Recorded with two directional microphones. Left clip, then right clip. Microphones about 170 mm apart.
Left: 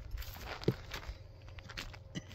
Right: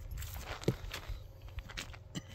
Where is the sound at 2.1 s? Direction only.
25° right (ahead or behind).